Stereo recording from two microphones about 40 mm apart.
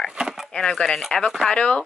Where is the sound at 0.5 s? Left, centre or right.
Centre.